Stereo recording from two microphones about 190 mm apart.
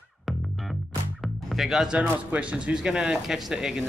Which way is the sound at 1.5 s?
Centre (ahead or behind).